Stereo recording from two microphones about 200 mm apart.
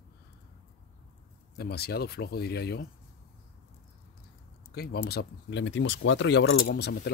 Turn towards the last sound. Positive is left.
turn(degrees=55)  # may be behind; listen again after turning